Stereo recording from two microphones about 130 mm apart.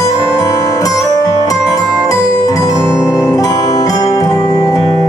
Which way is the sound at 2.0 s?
30° left (ahead or behind).